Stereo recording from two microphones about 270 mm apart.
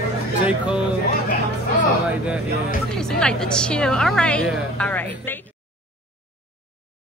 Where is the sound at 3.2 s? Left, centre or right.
Centre.